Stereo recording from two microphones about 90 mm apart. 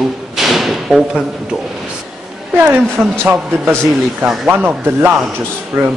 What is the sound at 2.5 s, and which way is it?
Speech, 20° right (ahead or behind).